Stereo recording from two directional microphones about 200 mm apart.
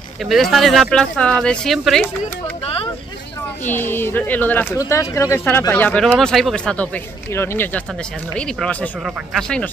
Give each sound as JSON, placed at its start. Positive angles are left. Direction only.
{"t": 0.2, "sound": "speech", "side_deg": 0}
{"t": 2.6, "sound": "vehicle", "side_deg": 30}
{"t": 3.6, "sound": "speech", "side_deg": 10}